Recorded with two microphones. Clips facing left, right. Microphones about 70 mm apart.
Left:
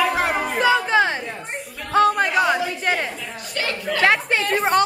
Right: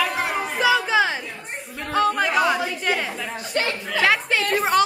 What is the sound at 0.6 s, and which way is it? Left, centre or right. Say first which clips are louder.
Music: left 1 dB; centre.